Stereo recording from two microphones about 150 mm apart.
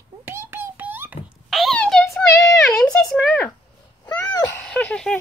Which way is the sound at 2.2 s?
20° left (ahead or behind).